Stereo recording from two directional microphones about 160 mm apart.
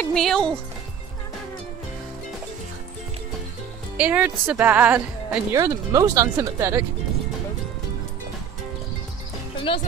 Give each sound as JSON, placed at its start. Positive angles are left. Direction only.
{"t": 0.0, "sound": "speech", "side_deg": 0}
{"t": 3.9, "sound": "speech", "side_deg": -10}
{"t": 5.5, "sound": "speech", "side_deg": -20}
{"t": 9.7, "sound": "speech", "side_deg": 30}